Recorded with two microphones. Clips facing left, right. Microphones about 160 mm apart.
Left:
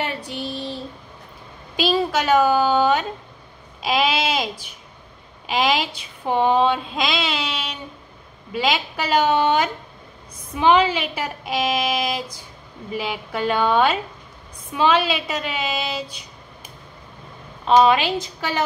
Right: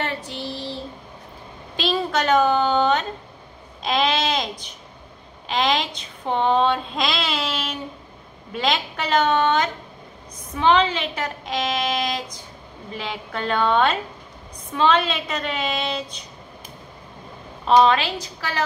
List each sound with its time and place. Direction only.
0.0 s child singing: 15° left (ahead or behind)
1.8 s a sound: 5° left (ahead or behind)
5.5 s a woman's voice: 5° left (ahead or behind)
17.6 s a woman's voice: 10° left (ahead or behind)